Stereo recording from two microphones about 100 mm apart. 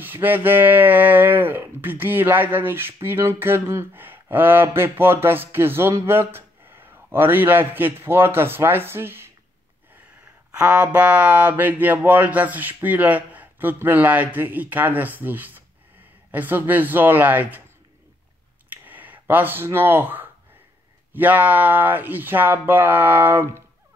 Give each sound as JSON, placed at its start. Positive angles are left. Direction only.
{"t": 0.0, "sound": "speech", "side_deg": -20}
{"t": 10.5, "sound": "speech", "side_deg": -10}
{"t": 18.7, "sound": "a sound", "side_deg": -15}
{"t": 21.1, "sound": "speech", "side_deg": -15}